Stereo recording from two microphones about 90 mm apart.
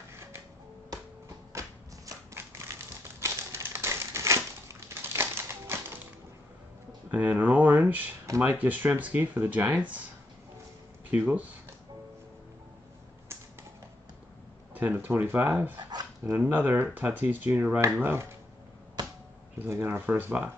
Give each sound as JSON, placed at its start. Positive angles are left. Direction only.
{"t": 1.5, "sound": "a sound", "side_deg": -35}
{"t": 7.1, "sound": "a sound", "side_deg": -20}
{"t": 8.4, "sound": "speech", "side_deg": -20}
{"t": 11.1, "sound": "speech", "side_deg": -20}
{"t": 14.7, "sound": "speech", "side_deg": -20}
{"t": 15.9, "sound": "dog", "side_deg": -50}
{"t": 16.3, "sound": "speech", "side_deg": -20}
{"t": 19.0, "sound": "a sound", "side_deg": -55}
{"t": 19.6, "sound": "speech", "side_deg": -25}